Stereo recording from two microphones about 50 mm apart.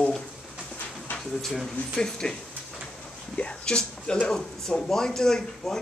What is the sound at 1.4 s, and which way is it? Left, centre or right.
Speech, centre.